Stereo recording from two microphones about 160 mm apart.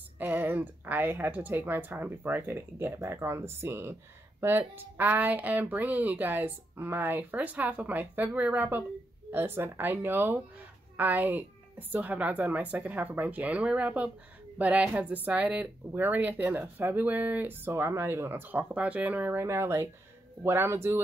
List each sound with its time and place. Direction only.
0.2 s speech: 10° right (ahead or behind)